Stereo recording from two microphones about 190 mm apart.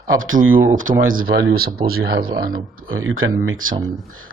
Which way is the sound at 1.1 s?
50° right (ahead or behind).